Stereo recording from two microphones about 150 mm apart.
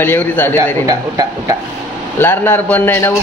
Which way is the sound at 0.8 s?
25° right (ahead or behind).